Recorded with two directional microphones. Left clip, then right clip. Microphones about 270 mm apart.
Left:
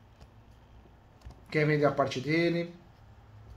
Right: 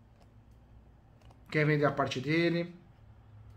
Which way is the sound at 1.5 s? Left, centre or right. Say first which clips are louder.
Left 2 dB; centre.